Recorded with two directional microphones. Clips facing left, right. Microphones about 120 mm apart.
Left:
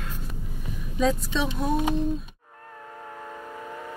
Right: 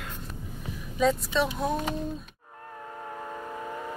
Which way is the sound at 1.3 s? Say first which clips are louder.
Right 1 dB; 10° right (ahead or behind).